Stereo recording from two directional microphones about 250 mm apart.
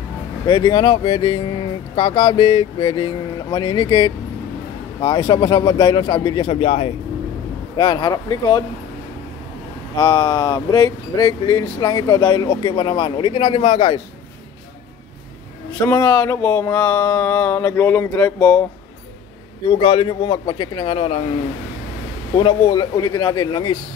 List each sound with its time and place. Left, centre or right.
0.5 s speech: centre
9.9 s speech: centre
15.8 s speech: centre
19.7 s a man's voice: left
22.4 s speech: centre